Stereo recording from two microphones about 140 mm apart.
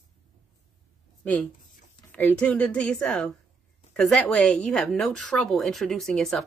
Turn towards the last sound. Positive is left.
turn(degrees=5)  # may be behind; listen again after turning